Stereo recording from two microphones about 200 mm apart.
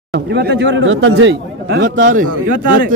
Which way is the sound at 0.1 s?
55° right (ahead or behind).